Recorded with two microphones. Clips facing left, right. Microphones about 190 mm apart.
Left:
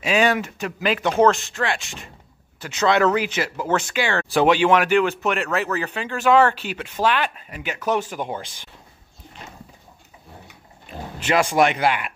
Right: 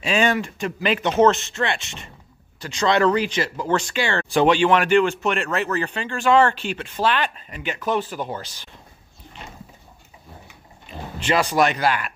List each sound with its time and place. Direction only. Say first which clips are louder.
0.0 s speech: left 1 dB; 10° left (ahead or behind)
11.1 s speech: left 1 dB; 10° left (ahead or behind)